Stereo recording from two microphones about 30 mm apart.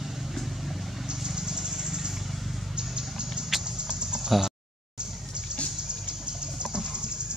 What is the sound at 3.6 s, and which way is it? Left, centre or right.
Rodents, right.